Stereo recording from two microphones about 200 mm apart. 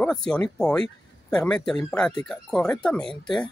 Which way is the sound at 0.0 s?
5° left (ahead or behind).